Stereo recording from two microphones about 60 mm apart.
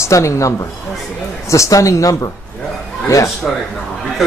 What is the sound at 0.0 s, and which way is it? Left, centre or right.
Speech, left.